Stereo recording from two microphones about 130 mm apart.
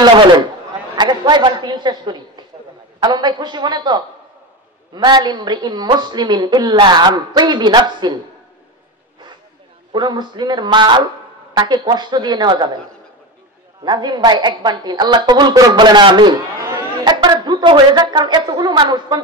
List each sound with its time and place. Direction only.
0.0 s a sound: 35° right (ahead or behind)
0.9 s a woman's voice: 35° right (ahead or behind)
9.9 s a woman's voice: 35° right (ahead or behind)
13.8 s a woman's voice: 35° right (ahead or behind)